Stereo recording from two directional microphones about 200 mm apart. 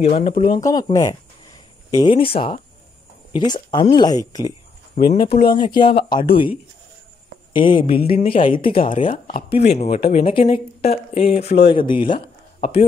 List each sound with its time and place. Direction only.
0.0 s speech: 30° left (ahead or behind)
7.5 s speech: 25° left (ahead or behind); by 8.6 s 40° left (ahead or behind)
8.6 s speech: 25° left (ahead or behind)
9.0 s speech: 40° left (ahead or behind)